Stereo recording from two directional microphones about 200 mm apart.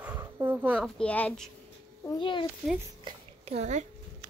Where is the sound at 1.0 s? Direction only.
5° left (ahead or behind).